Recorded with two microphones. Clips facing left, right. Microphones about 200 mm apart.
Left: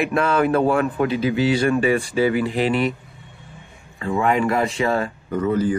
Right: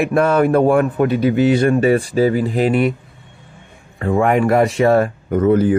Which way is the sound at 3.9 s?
55° right (ahead or behind).